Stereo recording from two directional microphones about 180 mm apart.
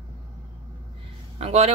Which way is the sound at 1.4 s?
35° right (ahead or behind).